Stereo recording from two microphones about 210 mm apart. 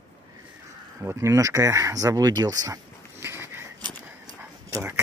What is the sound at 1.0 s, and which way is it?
Speech, 15° right (ahead or behind).